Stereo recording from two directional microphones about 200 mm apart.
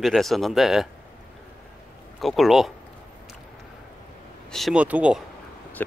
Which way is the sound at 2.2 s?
Centre (ahead or behind).